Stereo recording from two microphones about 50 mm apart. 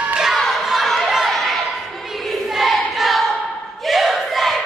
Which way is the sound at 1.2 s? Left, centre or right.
Centre.